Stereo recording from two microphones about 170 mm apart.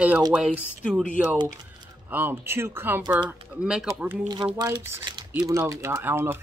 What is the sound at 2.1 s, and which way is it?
Speech, 15° right (ahead or behind).